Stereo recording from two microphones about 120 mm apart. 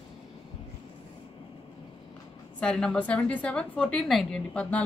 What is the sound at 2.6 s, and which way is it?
A woman's voice, 5° left (ahead or behind).